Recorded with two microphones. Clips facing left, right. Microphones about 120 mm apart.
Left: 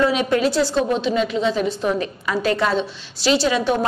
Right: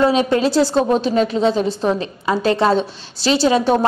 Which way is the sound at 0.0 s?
30° right (ahead or behind).